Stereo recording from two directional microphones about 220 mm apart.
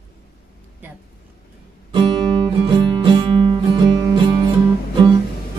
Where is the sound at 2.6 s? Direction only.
20° right (ahead or behind).